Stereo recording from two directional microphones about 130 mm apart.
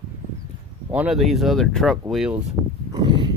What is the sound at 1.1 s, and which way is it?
Speech, centre (ahead or behind).